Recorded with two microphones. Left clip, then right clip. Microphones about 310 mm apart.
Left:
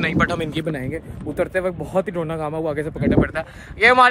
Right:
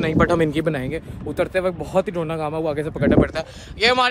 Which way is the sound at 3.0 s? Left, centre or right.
Centre.